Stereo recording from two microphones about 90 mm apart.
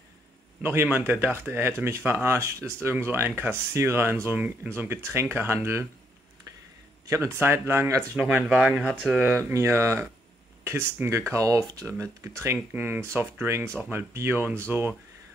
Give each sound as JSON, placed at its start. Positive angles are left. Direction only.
{"t": 0.6, "sound": "a man's voice", "side_deg": -25}
{"t": 7.1, "sound": "speech", "side_deg": -30}
{"t": 8.2, "sound": "speech", "side_deg": -15}
{"t": 9.4, "sound": "speech", "side_deg": -30}